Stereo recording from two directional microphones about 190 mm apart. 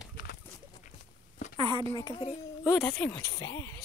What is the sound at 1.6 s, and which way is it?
Speech, 25° right (ahead or behind).